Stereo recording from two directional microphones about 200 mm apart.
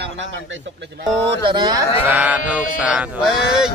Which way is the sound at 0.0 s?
70° right (ahead or behind).